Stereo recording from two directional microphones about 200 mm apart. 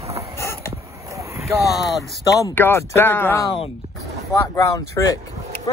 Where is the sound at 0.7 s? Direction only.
15° right (ahead or behind).